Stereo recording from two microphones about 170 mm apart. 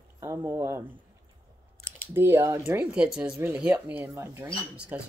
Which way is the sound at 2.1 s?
15° right (ahead or behind).